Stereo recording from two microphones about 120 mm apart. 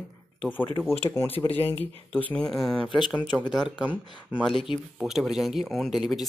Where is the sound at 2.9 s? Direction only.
40° left (ahead or behind).